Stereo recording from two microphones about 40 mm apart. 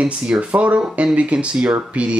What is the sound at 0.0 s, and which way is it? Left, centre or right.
Speech, right.